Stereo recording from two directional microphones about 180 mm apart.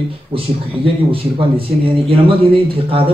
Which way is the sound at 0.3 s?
30° right (ahead or behind).